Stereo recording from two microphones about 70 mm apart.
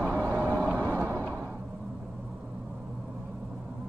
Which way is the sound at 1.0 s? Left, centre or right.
Right.